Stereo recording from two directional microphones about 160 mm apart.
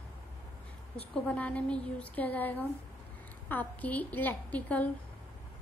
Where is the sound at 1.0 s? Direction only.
10° left (ahead or behind).